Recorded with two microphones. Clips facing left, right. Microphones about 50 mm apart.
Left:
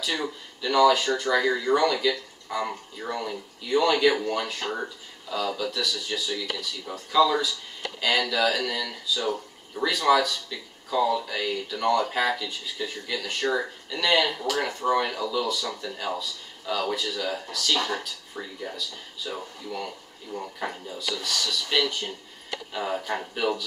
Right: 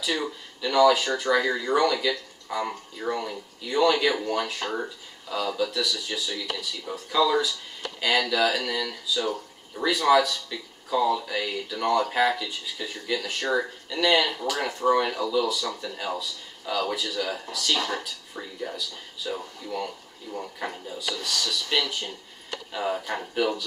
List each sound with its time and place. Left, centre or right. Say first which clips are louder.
0.0 s speech: right 1 dB; centre